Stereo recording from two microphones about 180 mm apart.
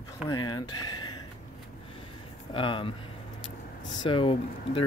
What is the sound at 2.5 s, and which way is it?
Speech, 30° left (ahead or behind).